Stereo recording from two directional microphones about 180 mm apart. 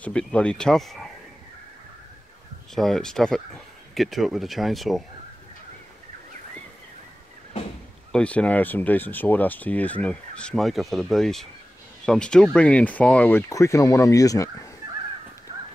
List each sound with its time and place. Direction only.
0.0 s speech: 5° left (ahead or behind)
2.7 s speech: centre (ahead or behind)
8.1 s speech: 5° left (ahead or behind)